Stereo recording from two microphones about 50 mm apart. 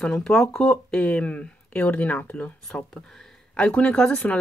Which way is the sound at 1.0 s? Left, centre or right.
Left.